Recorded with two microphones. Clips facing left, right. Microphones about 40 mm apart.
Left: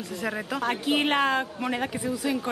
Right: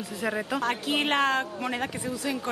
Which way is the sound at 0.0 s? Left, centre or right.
Centre.